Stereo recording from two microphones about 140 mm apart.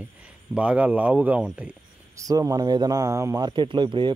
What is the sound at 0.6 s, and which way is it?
Speech, 10° right (ahead or behind).